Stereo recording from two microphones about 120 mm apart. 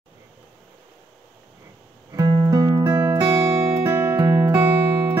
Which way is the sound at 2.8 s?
15° right (ahead or behind).